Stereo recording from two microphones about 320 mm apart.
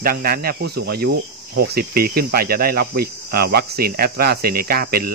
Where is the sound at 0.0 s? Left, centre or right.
Right.